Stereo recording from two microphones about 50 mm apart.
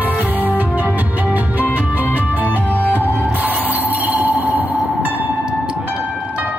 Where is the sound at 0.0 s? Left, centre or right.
Right.